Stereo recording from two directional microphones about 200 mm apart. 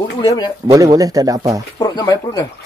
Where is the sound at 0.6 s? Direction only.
15° right (ahead or behind).